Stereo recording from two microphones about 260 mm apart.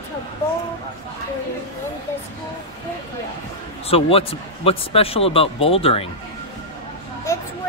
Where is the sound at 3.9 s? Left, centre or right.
Left.